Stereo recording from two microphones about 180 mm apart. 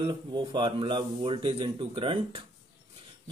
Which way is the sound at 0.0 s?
25° right (ahead or behind).